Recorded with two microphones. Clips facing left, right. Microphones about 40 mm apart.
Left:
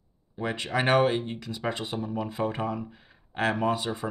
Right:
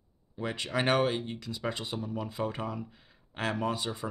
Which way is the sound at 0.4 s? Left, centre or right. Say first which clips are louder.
Left 3 dB; centre.